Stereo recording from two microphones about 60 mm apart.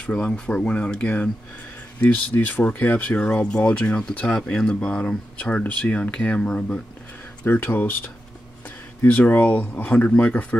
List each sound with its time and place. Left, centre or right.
0.0 s speech: centre
7.4 s speech: left